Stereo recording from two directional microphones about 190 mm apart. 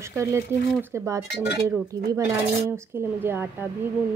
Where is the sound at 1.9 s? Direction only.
20° right (ahead or behind).